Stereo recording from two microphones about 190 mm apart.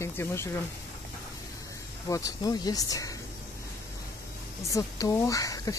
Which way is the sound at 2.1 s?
15° left (ahead or behind).